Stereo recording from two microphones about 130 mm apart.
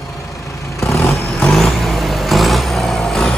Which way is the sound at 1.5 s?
Centre (ahead or behind).